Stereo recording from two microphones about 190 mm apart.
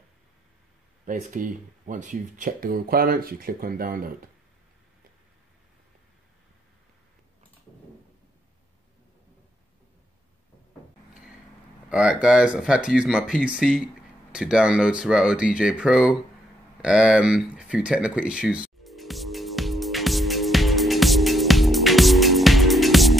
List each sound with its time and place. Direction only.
1.0 s speech: 40° right (ahead or behind)
11.9 s speech: 5° right (ahead or behind)
16.8 s a sound: 5° right (ahead or behind)